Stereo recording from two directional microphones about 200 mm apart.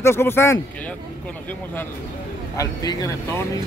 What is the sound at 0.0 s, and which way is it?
Speech, 10° left (ahead or behind).